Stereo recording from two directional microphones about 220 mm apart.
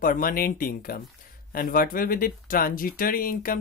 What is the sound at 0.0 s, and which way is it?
Speech, 40° left (ahead or behind).